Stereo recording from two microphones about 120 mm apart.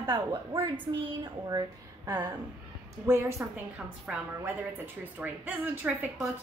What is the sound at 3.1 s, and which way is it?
A woman's voice, 20° right (ahead or behind).